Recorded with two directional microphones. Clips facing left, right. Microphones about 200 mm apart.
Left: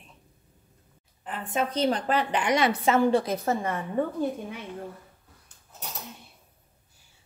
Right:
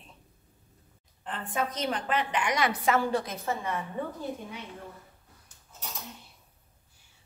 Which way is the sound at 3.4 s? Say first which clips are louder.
Left 4 dB; 45° left (ahead or behind).